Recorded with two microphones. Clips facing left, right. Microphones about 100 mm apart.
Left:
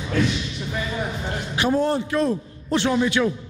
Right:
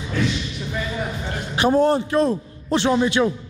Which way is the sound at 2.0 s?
30° right (ahead or behind).